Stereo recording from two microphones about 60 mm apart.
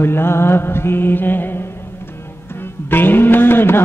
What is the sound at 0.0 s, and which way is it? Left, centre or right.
Mantra, left.